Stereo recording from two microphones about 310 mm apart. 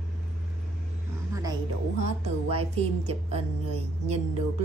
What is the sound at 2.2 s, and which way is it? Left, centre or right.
A woman's voice, centre.